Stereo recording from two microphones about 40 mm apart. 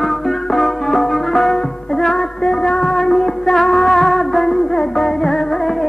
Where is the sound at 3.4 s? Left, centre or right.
Centre.